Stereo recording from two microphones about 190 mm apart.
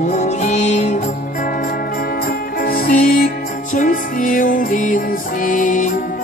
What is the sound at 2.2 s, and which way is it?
Music, 50° left (ahead or behind).